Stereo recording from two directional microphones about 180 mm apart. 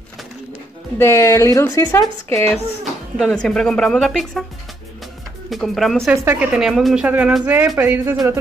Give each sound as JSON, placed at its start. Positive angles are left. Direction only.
{"t": 0.9, "sound": "a woman's voice", "side_deg": 15}
{"t": 5.5, "sound": "speech", "side_deg": 0}